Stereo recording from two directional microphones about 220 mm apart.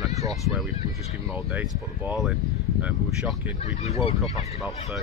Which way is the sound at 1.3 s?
5° right (ahead or behind).